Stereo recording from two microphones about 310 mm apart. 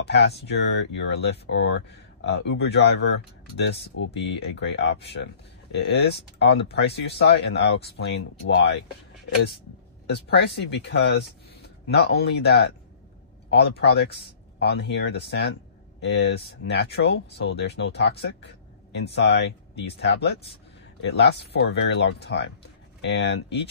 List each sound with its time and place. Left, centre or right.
0.0 s speech: left
10.0 s speech: left